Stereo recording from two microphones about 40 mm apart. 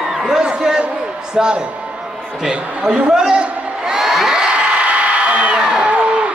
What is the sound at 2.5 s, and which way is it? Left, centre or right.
Speech, right.